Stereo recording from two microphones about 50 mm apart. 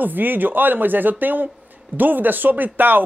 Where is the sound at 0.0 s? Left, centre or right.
Right.